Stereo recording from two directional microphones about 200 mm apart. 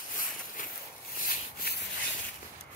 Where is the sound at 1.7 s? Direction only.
50° left (ahead or behind).